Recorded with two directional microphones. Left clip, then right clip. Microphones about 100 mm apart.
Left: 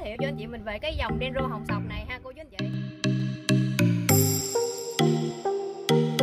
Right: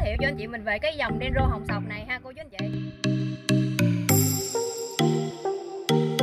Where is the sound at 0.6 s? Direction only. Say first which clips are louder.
Right 5 dB; 5° left (ahead or behind).